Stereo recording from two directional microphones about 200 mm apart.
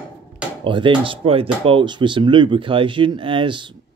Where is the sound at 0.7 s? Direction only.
25° right (ahead or behind).